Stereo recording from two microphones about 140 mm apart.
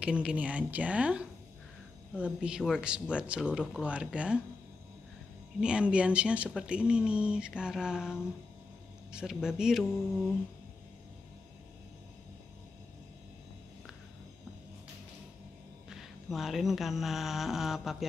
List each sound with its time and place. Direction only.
0.0 s speech: 5° right (ahead or behind)
5.6 s speech: 5° right (ahead or behind)
15.9 s a sound: centre (ahead or behind)